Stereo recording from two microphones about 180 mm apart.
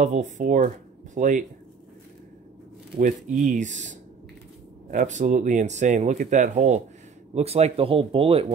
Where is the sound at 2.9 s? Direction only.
50° right (ahead or behind).